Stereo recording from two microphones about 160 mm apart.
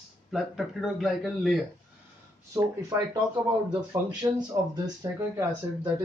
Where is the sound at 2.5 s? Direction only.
20° right (ahead or behind).